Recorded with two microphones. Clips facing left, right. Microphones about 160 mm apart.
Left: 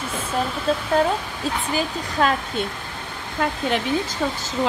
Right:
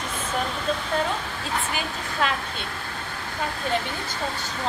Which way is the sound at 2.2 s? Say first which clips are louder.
Left 6 dB; 40° left (ahead or behind).